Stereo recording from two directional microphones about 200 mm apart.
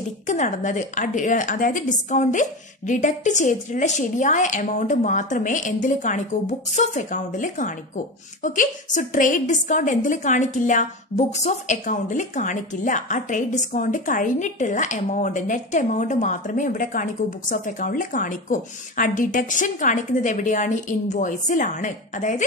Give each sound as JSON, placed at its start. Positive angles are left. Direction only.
{"t": 0.3, "sound": "a woman's voice", "side_deg": 40}